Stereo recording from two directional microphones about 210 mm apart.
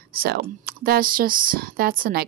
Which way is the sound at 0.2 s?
45° right (ahead or behind).